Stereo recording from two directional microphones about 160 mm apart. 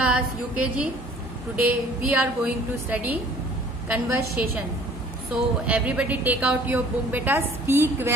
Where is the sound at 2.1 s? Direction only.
10° right (ahead or behind).